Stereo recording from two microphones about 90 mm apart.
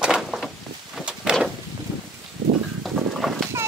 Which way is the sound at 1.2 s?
5° right (ahead or behind).